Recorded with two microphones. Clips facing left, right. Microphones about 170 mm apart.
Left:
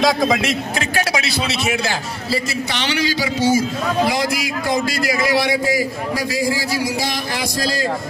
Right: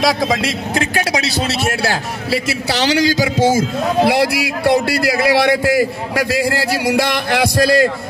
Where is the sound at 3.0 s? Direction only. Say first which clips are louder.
Right 3 dB; 90° right.